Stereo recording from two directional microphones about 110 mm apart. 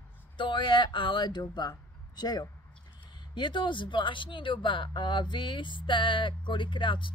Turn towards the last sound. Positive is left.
turn(degrees=50)  # may be behind; listen again after turning